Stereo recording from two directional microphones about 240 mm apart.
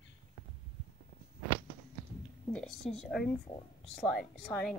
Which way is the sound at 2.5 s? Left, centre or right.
Centre.